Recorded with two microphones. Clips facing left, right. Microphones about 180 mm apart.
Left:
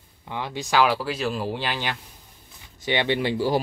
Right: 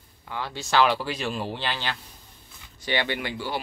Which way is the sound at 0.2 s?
20° left (ahead or behind).